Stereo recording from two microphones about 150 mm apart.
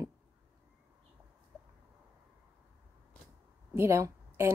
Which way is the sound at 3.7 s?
15° right (ahead or behind).